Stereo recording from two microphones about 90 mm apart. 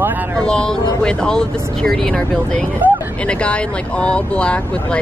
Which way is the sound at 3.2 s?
10° left (ahead or behind).